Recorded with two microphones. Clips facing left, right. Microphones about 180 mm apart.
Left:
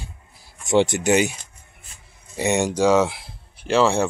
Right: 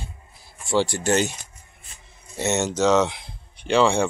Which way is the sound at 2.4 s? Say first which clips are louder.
Left 2 dB; 15° left (ahead or behind).